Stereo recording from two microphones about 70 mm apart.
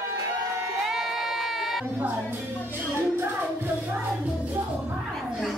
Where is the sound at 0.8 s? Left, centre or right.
Centre.